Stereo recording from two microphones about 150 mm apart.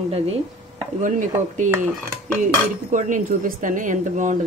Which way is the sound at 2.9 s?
55° right (ahead or behind).